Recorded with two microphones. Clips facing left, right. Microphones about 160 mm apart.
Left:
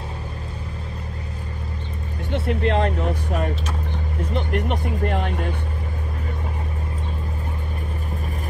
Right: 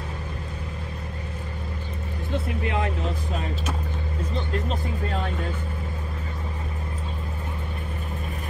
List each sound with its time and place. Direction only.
2.4 s speech: 65° left (ahead or behind)